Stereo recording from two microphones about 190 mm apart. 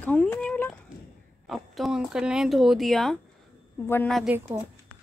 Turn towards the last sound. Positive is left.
turn(degrees=0)  # may be behind; listen again after turning